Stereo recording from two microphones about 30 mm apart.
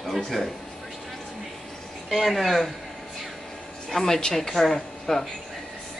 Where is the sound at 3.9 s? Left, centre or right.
Centre.